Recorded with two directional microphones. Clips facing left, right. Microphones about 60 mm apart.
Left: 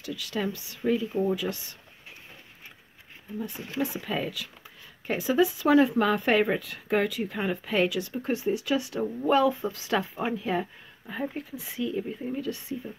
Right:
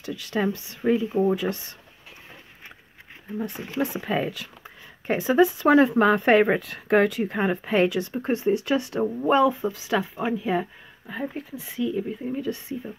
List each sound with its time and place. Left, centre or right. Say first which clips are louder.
0.0 s speech: right 5 dB; right
3.4 s speech: right 3 dB; right
4.0 s speech: right 5 dB; right
7.3 s speech: right 4 dB; right
9.2 s speech: right 2 dB; right
9.6 s speech: right 3 dB; centre
12.4 s speech: right 3 dB; right